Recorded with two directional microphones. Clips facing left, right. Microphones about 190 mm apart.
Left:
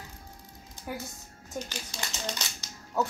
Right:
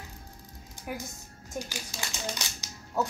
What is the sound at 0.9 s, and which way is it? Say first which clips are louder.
Speech: even; 15° right (ahead or behind).